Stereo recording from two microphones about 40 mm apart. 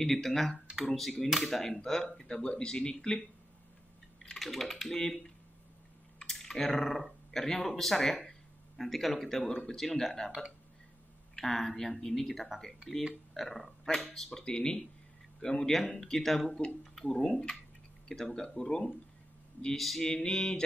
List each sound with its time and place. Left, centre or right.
0.0 s speech: centre
4.4 s speech: centre
6.3 s speech: centre
9.5 s speech: centre
9.8 s speech: centre
11.3 s speech: centre
14.4 s speech: left
19.7 s speech: centre
20.0 s speech: centre